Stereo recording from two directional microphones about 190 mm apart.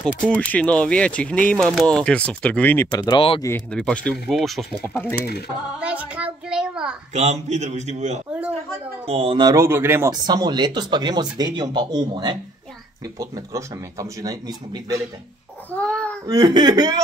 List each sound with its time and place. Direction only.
0.3 s speech: 5° left (ahead or behind); by 3.4 s 25° left (ahead or behind)
3.4 s speech: 5° left (ahead or behind)
5.8 s a sound: 5° right (ahead or behind)
7.2 s a man's voice: 35° right (ahead or behind); by 15.0 s 20° right (ahead or behind)
15.7 s a sound: 5° left (ahead or behind)
16.3 s speech: 20° right (ahead or behind)